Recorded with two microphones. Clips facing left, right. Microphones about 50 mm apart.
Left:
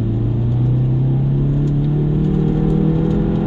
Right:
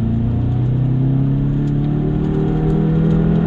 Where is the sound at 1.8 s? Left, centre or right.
Centre.